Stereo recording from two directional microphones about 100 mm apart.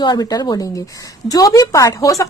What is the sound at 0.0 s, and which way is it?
Speech, 45° left (ahead or behind).